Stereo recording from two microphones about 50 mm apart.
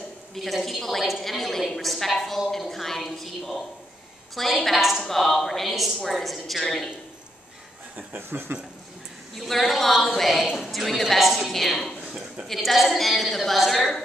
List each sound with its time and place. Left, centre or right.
0.3 s a woman's voice: centre
4.6 s a woman's voice: centre
8.1 s speech: right
9.3 s a woman's voice: centre
12.0 s a sound: right
12.5 s a woman's voice: centre